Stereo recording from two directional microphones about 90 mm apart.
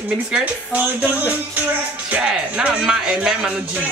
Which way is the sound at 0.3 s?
20° right (ahead or behind).